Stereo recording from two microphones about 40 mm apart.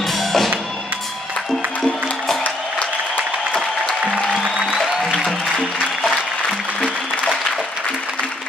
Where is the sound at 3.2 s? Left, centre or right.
Right.